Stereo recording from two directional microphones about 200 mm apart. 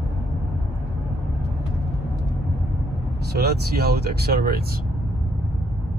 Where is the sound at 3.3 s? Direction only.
50° right (ahead or behind).